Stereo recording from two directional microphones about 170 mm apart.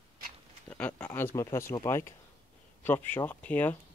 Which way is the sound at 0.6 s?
10° left (ahead or behind).